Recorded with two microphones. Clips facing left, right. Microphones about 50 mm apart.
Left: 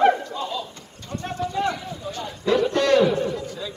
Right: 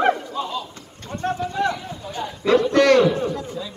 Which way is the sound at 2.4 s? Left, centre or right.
Right.